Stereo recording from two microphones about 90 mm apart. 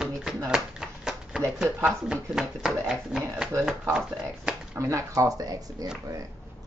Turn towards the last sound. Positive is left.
turn(degrees=-40)  # may be behind; listen again after turning